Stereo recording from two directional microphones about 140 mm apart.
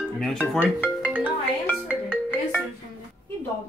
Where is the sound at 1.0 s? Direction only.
10° right (ahead or behind).